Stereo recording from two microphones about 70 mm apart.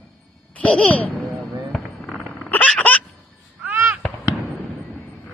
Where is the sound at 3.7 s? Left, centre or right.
Right.